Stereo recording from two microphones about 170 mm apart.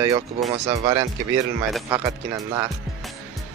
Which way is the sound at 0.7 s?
30° right (ahead or behind).